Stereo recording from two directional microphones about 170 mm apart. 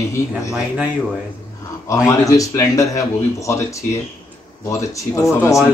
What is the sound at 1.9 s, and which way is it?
A man's voice, 20° left (ahead or behind).